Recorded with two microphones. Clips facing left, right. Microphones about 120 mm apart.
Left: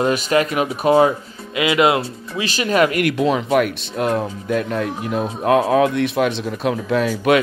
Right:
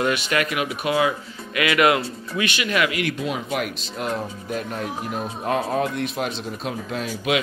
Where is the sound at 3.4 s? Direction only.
50° left (ahead or behind).